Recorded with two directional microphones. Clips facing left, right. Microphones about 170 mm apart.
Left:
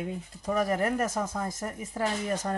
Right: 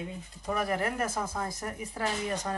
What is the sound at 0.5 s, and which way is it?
Speech, 40° left (ahead or behind).